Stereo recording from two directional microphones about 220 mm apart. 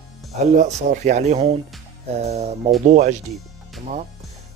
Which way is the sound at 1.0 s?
30° right (ahead or behind).